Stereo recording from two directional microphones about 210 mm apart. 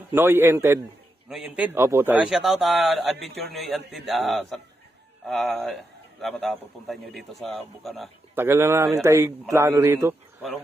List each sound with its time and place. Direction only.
0.1 s a man's voice: 10° right (ahead or behind)
8.4 s a man's voice: 10° right (ahead or behind)